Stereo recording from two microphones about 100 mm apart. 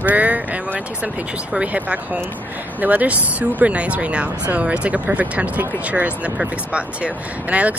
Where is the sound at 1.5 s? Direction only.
15° right (ahead or behind).